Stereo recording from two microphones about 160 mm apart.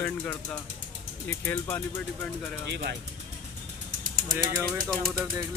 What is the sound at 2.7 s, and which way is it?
Speech, 90° right.